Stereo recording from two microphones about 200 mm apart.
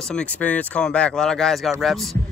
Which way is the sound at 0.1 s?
5° left (ahead or behind).